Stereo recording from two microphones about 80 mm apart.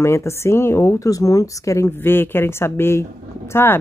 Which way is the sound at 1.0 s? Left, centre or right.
Left.